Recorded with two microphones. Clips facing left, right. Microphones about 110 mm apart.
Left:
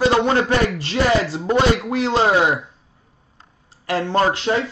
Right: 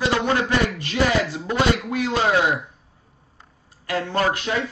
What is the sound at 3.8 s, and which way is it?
Speech, 30° left (ahead or behind).